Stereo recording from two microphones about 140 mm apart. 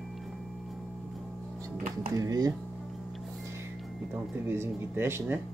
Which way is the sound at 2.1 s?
25° right (ahead or behind).